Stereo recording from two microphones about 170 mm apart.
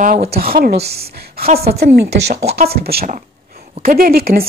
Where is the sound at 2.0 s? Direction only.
80° right.